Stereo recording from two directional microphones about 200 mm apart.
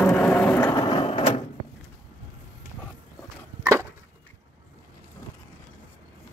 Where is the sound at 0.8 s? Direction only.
25° left (ahead or behind).